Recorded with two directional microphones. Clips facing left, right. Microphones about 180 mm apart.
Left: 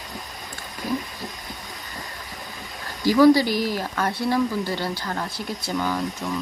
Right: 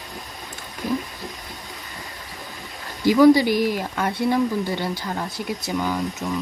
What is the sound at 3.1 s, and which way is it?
Speech, 20° right (ahead or behind).